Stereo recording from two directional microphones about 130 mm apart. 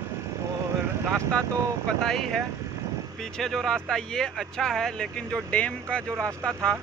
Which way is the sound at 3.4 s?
5° left (ahead or behind).